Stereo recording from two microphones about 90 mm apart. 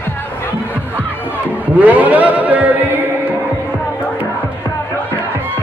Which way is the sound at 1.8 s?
15° right (ahead or behind).